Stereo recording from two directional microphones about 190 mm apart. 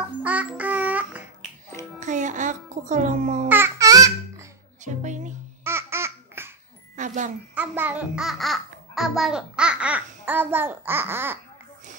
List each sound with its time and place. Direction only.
0.2 s music: 5° right (ahead or behind)
2.0 s music: 40° right (ahead or behind)
3.4 s music: 10° right (ahead or behind)
4.8 s speech: 40° right (ahead or behind)
5.6 s laughter: 15° right (ahead or behind)
7.0 s a sound: 40° right (ahead or behind)
7.5 s a child's voice: 10° right (ahead or behind)